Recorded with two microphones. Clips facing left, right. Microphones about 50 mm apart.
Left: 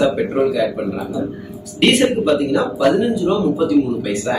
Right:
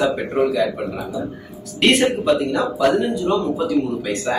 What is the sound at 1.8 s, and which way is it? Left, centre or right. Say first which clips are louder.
Speech: left 2 dB; centre.